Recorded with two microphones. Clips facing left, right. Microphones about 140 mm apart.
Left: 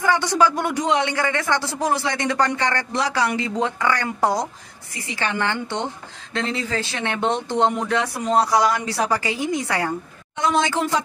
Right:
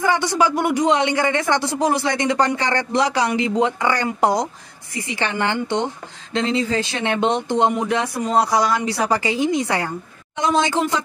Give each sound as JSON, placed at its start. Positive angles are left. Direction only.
{"t": 0.0, "sound": "a man's voice", "side_deg": -15}